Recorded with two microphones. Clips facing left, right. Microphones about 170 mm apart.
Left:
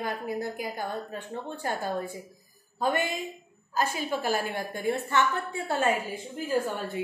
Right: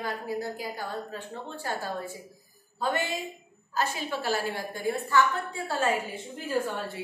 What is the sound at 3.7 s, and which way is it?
A woman's voice, 10° left (ahead or behind).